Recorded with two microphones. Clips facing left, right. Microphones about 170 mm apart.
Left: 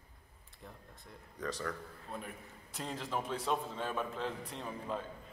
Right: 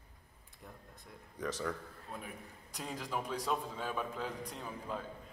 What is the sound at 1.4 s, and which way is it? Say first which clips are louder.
Speech: right 1 dB; 15° right (ahead or behind).